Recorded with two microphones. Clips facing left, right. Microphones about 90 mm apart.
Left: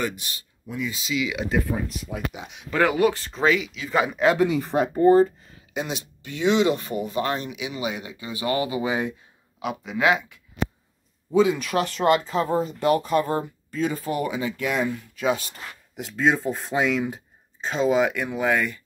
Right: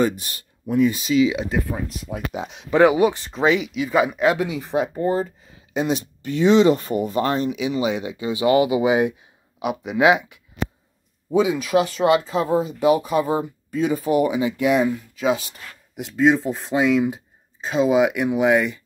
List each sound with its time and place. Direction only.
0.0 s speech: 40° right (ahead or behind)
1.2 s speech: 30° right (ahead or behind)
2.7 s speech: 15° right (ahead or behind)
5.7 s speech: 35° right (ahead or behind); by 14.9 s 15° right (ahead or behind)
14.9 s speech: centre (ahead or behind)